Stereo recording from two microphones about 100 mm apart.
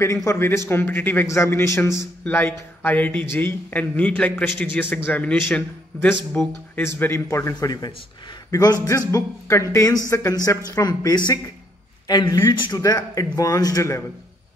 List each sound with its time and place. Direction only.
0.0 s a man's voice: 30° left (ahead or behind)
2.2 s a man's voice: 15° left (ahead or behind); by 12.7 s 50° left (ahead or behind)
12.7 s speech: 40° left (ahead or behind)